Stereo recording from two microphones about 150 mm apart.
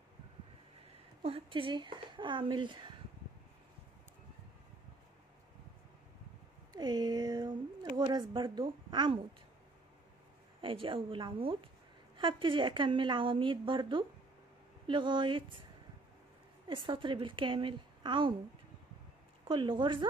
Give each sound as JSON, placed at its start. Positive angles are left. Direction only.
{"t": 1.2, "sound": "a woman's voice", "side_deg": -40}
{"t": 6.7, "sound": "a woman's voice", "side_deg": -30}
{"t": 10.6, "sound": "a woman's voice", "side_deg": -35}
{"t": 16.6, "sound": "a woman's voice", "side_deg": -35}
{"t": 19.4, "sound": "a woman's voice", "side_deg": -30}